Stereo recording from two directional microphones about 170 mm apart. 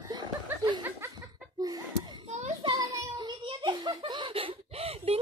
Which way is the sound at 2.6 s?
25° right (ahead or behind).